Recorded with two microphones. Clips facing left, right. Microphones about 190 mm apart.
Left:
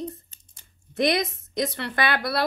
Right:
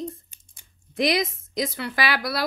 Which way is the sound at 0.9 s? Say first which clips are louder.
Even; centre (ahead or behind).